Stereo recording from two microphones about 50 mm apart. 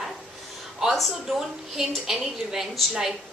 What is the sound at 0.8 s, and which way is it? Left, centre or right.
A woman's voice, centre.